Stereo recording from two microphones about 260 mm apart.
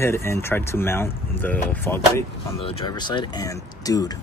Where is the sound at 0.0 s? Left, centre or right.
Centre.